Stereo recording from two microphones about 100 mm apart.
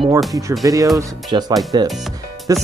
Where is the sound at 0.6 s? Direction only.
35° right (ahead or behind).